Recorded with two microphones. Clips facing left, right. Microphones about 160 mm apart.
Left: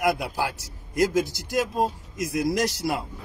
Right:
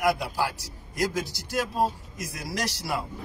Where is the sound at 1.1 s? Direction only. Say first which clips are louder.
Left 5 dB; 20° left (ahead or behind).